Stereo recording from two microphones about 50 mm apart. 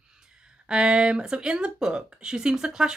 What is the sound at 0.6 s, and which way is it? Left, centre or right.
Speech, centre.